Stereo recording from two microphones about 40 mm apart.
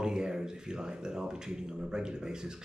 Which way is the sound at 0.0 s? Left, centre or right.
Centre.